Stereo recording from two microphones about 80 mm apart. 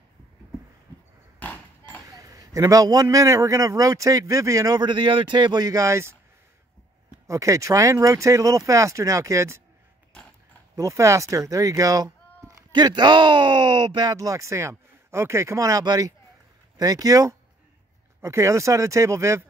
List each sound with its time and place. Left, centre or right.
1.4 s a sound: left
2.0 s a man's voice: right
4.8 s speech: right
7.2 s a man's voice: right
10.8 s speech: right
12.7 s speech: right
14.1 s speech: right
15.8 s a man's voice: right